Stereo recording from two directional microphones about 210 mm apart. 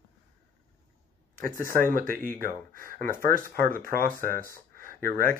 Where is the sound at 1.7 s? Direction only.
40° right (ahead or behind).